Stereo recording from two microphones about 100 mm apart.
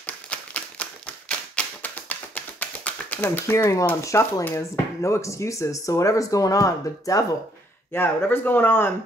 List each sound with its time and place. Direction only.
0.0 s typewriter: 15° left (ahead or behind)
3.5 s speech: 30° left (ahead or behind)
7.9 s speech: 20° left (ahead or behind)